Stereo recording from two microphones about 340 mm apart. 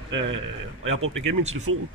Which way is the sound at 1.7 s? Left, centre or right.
Right.